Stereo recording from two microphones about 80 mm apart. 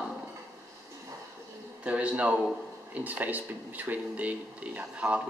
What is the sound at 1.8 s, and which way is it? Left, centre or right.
Speech, centre.